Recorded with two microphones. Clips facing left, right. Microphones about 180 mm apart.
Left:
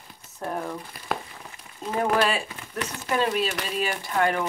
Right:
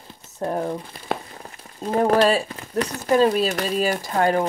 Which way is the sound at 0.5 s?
35° right (ahead or behind).